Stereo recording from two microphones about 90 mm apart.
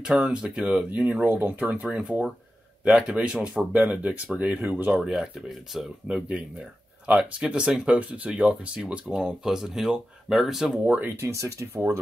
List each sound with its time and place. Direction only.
0.0 s speech: 5° right (ahead or behind)
10.9 s speech: 25° right (ahead or behind)